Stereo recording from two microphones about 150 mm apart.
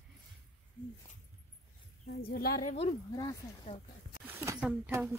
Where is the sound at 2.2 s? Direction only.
90° left.